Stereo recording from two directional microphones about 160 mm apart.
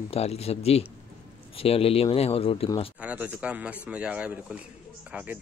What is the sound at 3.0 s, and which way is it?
Speech, 10° right (ahead or behind).